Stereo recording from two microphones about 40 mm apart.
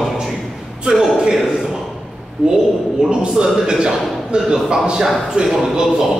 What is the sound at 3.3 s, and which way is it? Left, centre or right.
A man's voice, centre.